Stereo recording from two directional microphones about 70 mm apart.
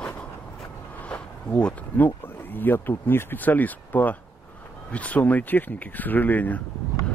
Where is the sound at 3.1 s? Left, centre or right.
Left.